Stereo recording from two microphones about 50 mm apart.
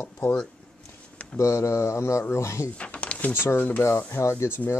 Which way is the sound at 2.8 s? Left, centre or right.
Left.